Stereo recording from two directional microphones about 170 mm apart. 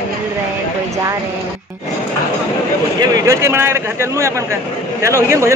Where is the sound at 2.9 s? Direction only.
20° right (ahead or behind).